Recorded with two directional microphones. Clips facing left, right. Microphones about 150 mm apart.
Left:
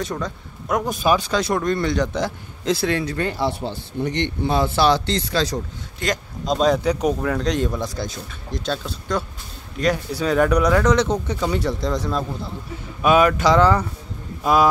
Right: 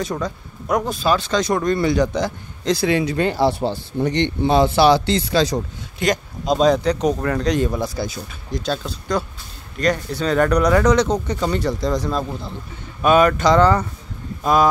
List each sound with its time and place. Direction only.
0.0 s a man's voice: centre (ahead or behind)
0.8 s a man's voice: 15° left (ahead or behind)
2.9 s speech: 15° right (ahead or behind)
3.3 s speech: 35° right (ahead or behind)
4.6 s speech: 10° right (ahead or behind)
6.4 s a man's voice: centre (ahead or behind)